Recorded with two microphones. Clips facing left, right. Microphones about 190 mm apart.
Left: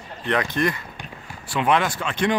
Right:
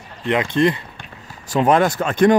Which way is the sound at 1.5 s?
40° right (ahead or behind).